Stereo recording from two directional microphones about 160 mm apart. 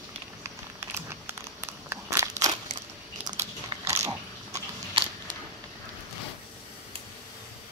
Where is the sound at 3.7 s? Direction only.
30° right (ahead or behind).